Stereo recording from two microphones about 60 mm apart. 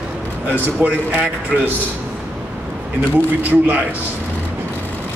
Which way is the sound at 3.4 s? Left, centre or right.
Right.